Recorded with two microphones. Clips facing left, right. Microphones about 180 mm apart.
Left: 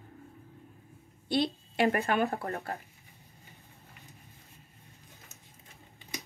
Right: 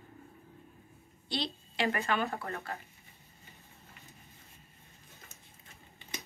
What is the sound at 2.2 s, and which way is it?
Speech, 35° left (ahead or behind).